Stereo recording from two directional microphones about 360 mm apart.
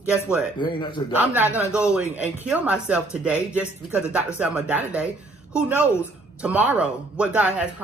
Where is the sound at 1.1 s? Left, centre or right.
Centre.